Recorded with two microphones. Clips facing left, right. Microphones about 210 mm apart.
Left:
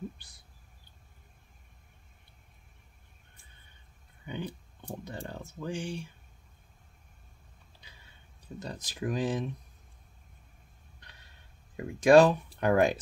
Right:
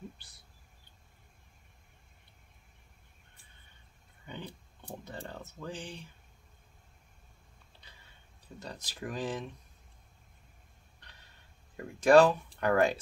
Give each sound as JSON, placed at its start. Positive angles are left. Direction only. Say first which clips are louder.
{"t": 4.3, "sound": "a sound", "louder": "left 6 dB", "side_deg": 15}
{"t": 5.1, "sound": "speech", "louder": "left 3 dB", "side_deg": 15}
{"t": 8.6, "sound": "speech", "louder": "left 6 dB", "side_deg": 15}
{"t": 11.7, "sound": "speech", "louder": "left 2 dB", "side_deg": 15}